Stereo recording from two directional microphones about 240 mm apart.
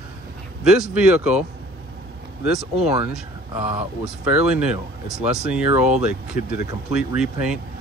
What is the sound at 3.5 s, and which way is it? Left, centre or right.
Speech, right.